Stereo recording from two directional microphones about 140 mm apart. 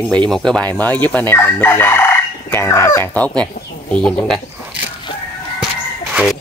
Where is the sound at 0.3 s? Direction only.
5° left (ahead or behind).